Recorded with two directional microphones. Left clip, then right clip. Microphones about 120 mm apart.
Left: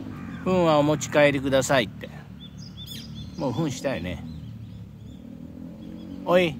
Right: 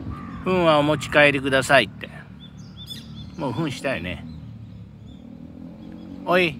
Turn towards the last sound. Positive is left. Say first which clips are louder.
# right 1 dB
turn(degrees=20)  # may be behind; listen again after turning